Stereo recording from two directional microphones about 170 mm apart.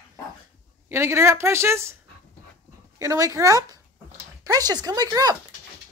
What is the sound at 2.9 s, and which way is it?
Speech, 20° right (ahead or behind).